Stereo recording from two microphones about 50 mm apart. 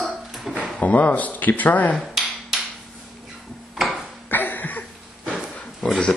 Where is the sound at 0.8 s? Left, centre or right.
Left.